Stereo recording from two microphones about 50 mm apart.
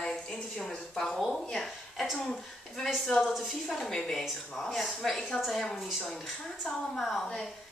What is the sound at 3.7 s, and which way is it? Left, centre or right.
A woman's voice, centre.